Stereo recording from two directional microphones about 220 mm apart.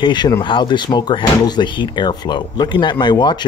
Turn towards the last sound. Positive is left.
turn(degrees=20)  # may be behind; listen again after turning